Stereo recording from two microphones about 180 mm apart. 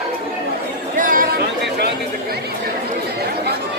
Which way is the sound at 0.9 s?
50° right (ahead or behind).